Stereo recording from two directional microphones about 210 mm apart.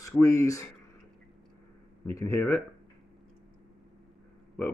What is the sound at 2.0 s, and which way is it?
Speech, 15° left (ahead or behind).